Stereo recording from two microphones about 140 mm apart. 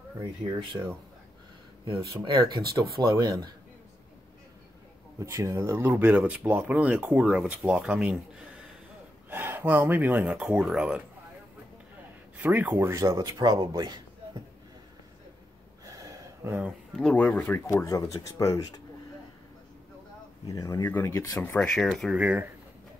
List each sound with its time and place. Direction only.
0.7 s speech: 20° right (ahead or behind)
2.2 s speech: 30° right (ahead or behind)
5.2 s speech: 20° right (ahead or behind)
9.3 s speech: 15° right (ahead or behind)
12.4 s speech: 10° right (ahead or behind); by 14.0 s 30° right (ahead or behind)
15.8 s a sound: 25° right (ahead or behind)
16.9 s speech: 5° left (ahead or behind)
17.7 s speech: 25° left (ahead or behind)
20.4 s speech: 25° left (ahead or behind)
21.6 s speech: centre (ahead or behind)
22.1 s speech: 10° right (ahead or behind)